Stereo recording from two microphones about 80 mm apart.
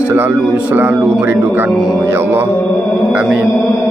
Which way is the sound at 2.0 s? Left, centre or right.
Right.